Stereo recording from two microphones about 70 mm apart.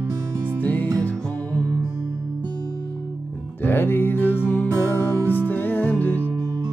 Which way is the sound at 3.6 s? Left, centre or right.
Left.